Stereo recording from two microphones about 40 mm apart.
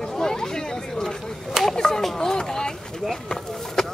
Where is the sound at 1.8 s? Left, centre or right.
Centre.